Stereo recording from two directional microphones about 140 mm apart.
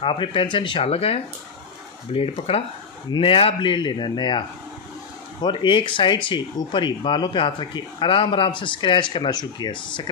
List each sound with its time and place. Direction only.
0.0 s speech: 40° left (ahead or behind)